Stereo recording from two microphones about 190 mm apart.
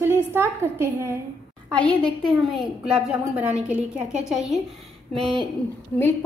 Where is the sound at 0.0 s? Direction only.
10° right (ahead or behind).